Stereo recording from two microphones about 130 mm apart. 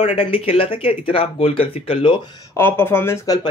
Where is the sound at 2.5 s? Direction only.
15° left (ahead or behind).